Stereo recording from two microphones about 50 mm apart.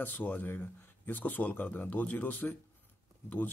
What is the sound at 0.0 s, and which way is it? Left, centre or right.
Speech, left.